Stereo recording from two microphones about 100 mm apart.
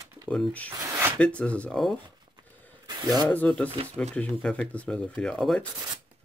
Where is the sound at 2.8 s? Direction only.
45° right (ahead or behind).